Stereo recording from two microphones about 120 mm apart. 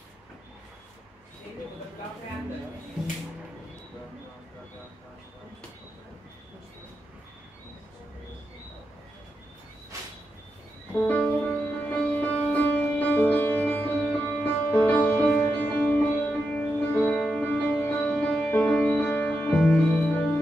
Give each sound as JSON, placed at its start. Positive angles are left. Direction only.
{"t": 11.1, "sound": "music", "side_deg": 15}